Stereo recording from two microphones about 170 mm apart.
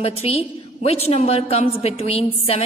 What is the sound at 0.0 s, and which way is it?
A woman's voice, 35° left (ahead or behind).